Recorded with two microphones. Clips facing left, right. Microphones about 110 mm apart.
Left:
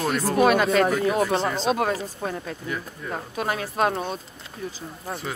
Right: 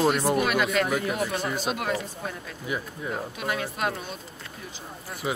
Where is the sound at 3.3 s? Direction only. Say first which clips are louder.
Left 9 dB; 35° left (ahead or behind).